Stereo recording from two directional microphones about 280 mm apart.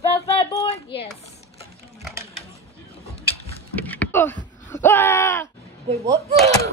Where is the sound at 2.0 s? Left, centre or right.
Centre.